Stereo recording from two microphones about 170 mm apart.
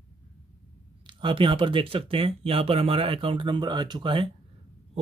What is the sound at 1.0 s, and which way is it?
A man's voice, 30° right (ahead or behind).